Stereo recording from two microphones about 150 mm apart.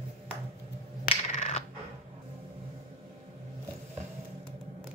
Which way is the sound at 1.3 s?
50° left (ahead or behind).